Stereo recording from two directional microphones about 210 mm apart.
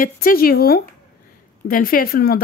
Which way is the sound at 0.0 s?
40° left (ahead or behind).